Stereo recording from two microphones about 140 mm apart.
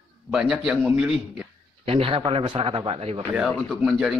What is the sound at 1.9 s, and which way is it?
Speech, 40° right (ahead or behind).